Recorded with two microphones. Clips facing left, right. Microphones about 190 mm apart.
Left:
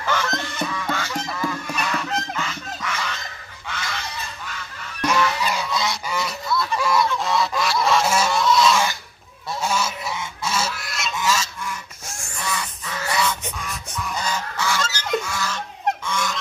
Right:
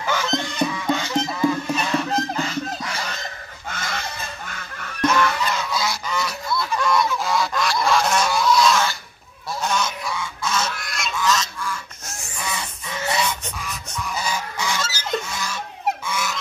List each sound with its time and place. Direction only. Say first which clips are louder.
0.0 s honk: right 1 dB; 15° right (ahead or behind); by 3.2 s 35° right (ahead or behind)
3.6 s goose: right 1 dB; 45° right (ahead or behind)
5.0 s goose: right 1 dB; 10° left (ahead or behind)
5.7 s goose: even; centre (ahead or behind)
12.4 s goose: left 2 dB; 25° right (ahead or behind)
13.7 s goose: right 1 dB; 5° right (ahead or behind)